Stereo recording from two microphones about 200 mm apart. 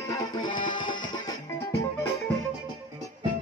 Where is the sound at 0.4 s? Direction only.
25° left (ahead or behind).